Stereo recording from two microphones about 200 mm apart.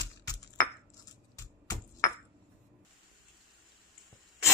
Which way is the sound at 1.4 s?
15° left (ahead or behind).